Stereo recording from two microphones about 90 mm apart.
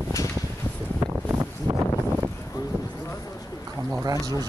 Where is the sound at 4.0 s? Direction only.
45° right (ahead or behind).